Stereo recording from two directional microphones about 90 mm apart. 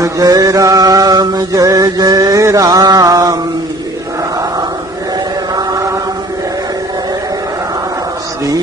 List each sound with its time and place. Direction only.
0.0 s mantra: 45° right (ahead or behind)
5.6 s chant: 40° right (ahead or behind)